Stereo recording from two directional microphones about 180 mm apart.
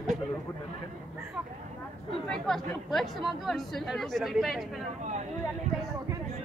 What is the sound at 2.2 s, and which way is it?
Speech, centre (ahead or behind).